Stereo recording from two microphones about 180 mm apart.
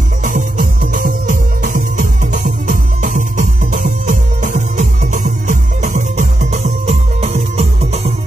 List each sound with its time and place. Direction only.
0.2 s music: 45° right (ahead or behind)